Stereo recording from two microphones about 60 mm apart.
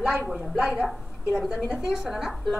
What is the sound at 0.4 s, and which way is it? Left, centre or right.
A woman's voice, centre.